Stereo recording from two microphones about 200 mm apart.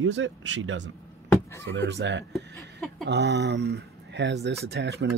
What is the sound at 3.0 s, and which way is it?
Speech, 55° right (ahead or behind).